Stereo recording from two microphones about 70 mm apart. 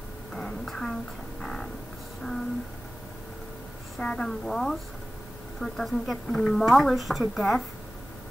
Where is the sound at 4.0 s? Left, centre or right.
Centre.